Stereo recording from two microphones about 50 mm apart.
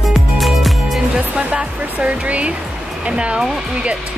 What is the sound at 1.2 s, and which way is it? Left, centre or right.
Speech, right.